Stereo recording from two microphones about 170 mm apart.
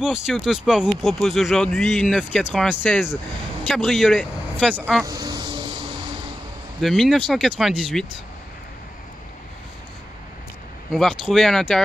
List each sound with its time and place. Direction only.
0.0 s speech: 5° right (ahead or behind)
5.0 s vehicle: 20° right (ahead or behind)
6.8 s speech: centre (ahead or behind)
10.9 s speech: centre (ahead or behind)